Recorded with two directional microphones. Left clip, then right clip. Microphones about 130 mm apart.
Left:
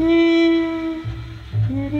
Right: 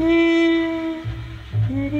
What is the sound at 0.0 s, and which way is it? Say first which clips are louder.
Music: left 1 dB; 5° left (ahead or behind).